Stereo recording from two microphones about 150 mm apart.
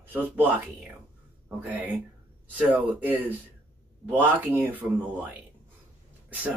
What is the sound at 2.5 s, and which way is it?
Speech, 10° right (ahead or behind).